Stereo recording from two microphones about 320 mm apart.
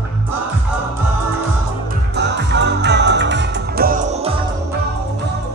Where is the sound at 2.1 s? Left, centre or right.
Right.